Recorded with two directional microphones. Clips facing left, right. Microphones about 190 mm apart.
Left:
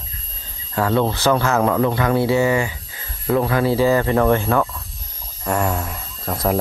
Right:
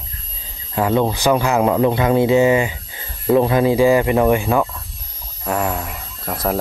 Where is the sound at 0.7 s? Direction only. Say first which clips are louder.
Right 1 dB; 15° right (ahead or behind).